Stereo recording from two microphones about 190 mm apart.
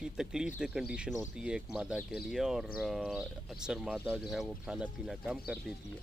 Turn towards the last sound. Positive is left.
turn(degrees=-5)  # may be behind; listen again after turning